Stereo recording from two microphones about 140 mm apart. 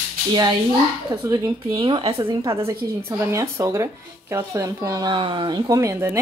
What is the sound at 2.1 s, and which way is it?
Speech, 20° right (ahead or behind).